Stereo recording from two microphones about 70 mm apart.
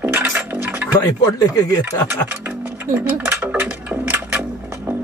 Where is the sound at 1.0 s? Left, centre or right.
Left.